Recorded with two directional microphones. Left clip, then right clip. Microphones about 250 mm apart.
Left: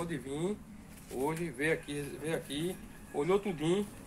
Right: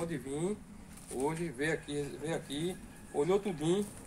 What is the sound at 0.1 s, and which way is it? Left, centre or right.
A man's voice, centre.